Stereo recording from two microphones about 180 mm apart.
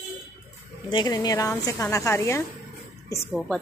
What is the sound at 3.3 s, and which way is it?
Speech, centre (ahead or behind).